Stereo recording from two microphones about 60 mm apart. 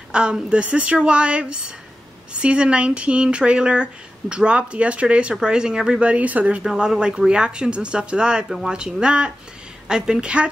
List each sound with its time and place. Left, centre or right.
0.1 s speech: centre
6.6 s speech: centre
8.5 s speech: centre
8.7 s speech: centre